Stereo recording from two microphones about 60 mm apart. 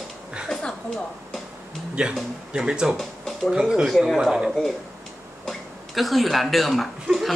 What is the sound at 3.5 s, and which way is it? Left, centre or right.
Speech, centre.